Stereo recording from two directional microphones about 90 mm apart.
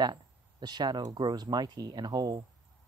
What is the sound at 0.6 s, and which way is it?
Speech, 50° right (ahead or behind).